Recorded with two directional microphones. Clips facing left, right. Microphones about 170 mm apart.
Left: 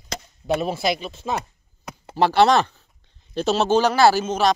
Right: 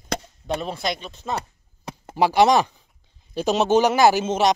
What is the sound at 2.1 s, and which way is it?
Speech, 15° right (ahead or behind).